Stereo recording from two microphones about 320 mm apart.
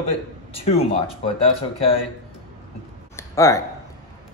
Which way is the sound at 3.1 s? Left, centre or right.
Centre.